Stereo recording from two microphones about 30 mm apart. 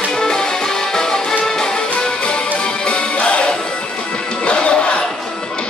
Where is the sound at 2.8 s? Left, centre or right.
Left.